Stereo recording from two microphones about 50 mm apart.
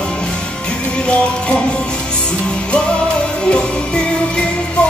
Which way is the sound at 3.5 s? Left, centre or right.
Centre.